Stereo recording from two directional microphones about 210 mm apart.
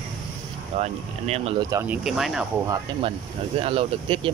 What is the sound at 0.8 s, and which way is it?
Speech, 30° right (ahead or behind).